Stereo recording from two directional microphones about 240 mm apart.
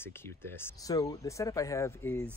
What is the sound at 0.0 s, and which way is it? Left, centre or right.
Speech, centre.